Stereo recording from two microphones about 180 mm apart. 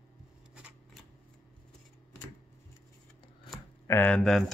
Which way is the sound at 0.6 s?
5° right (ahead or behind).